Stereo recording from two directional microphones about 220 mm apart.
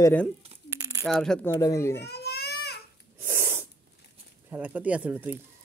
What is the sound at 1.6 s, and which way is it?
Speech, 15° left (ahead or behind).